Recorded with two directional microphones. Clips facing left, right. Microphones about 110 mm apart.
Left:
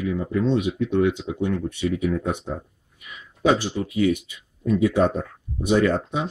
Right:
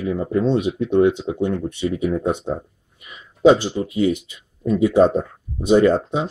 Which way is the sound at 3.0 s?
25° right (ahead or behind).